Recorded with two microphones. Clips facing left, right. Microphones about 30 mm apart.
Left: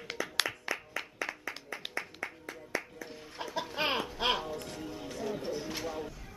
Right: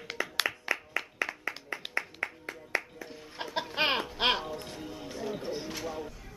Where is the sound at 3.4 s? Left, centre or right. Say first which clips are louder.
Right 2 dB; right.